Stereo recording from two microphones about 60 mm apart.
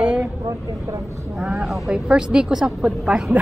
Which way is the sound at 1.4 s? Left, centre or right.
Centre.